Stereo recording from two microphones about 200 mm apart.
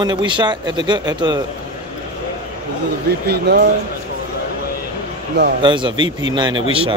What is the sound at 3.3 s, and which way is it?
Speech, 55° right (ahead or behind).